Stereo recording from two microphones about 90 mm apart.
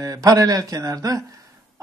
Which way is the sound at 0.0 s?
40° right (ahead or behind).